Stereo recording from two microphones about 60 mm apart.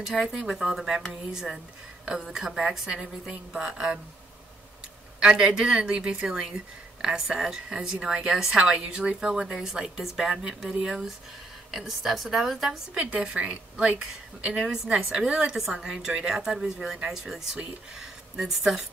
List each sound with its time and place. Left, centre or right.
0.0 s speech: centre
5.2 s speech: centre
8.7 s a woman's voice: centre
12.9 s a woman's voice: centre
14.5 s a woman's voice: centre